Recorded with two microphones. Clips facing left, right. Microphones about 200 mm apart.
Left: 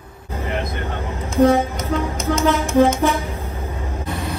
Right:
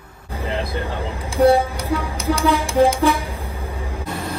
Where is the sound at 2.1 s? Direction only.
30° right (ahead or behind).